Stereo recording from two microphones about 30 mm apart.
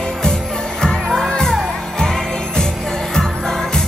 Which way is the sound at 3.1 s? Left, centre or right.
Centre.